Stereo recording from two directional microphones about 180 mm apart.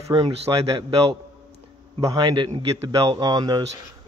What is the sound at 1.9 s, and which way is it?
A man's voice, 20° right (ahead or behind).